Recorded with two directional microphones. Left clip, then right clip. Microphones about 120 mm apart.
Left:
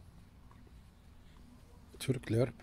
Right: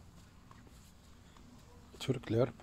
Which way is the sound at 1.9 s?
30° left (ahead or behind).